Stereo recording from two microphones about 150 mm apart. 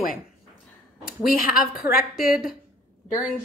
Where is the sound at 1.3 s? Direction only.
70° left (ahead or behind).